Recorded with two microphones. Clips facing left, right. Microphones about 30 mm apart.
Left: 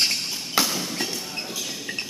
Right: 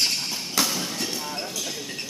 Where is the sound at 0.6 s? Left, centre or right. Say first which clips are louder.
Right 1 dB; centre.